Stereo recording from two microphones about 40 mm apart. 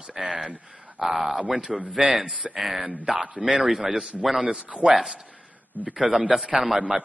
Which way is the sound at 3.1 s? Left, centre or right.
Right.